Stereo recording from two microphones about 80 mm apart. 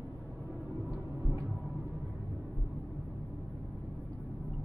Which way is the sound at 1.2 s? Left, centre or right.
Right.